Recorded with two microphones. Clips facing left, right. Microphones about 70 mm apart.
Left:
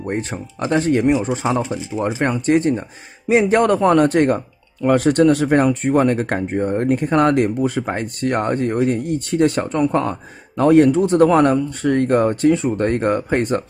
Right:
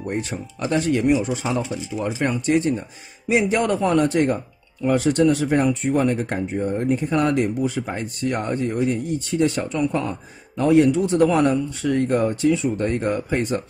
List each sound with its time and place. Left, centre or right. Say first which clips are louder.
0.0 s speech: left 3 dB; left